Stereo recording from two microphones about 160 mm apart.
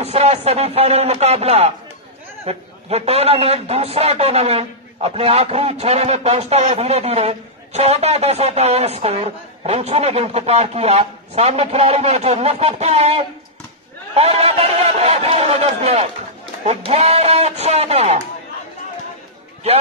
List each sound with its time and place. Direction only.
0.0 s a man's voice: 40° right (ahead or behind)